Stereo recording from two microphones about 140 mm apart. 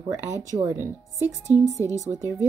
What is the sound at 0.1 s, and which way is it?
Speech, 20° right (ahead or behind).